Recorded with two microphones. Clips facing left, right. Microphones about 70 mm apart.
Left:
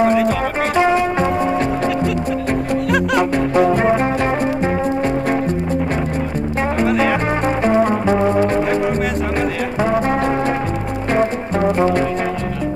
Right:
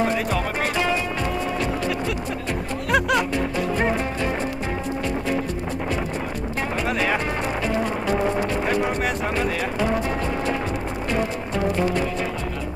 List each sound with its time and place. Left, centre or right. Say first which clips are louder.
0.0 s music: left 8 dB; centre
2.9 s music: left 2 dB; centre
3.5 s music: left 10 dB; left
7.4 s music: left 9 dB; left
10.0 s music: left 7 dB; left